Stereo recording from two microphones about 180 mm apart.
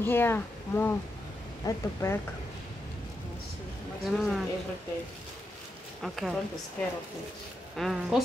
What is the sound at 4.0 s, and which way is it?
Speech, centre (ahead or behind).